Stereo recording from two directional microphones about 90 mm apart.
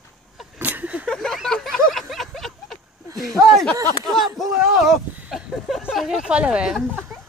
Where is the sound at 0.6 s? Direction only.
20° right (ahead or behind).